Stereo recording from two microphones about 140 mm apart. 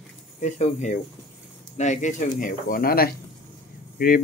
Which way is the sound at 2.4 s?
90° left.